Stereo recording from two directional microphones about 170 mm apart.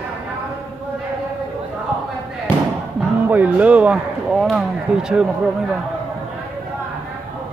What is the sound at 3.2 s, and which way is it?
Speech, 10° right (ahead or behind).